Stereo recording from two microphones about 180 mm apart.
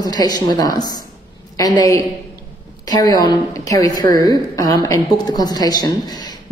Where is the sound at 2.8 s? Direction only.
20° left (ahead or behind).